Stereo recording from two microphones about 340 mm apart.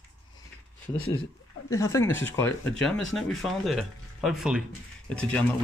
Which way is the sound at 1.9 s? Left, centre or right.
Centre.